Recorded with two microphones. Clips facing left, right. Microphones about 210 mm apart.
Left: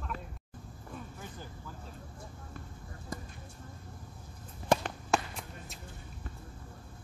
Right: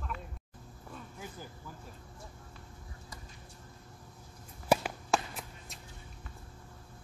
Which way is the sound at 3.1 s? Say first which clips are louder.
Left 12 dB; 50° left (ahead or behind).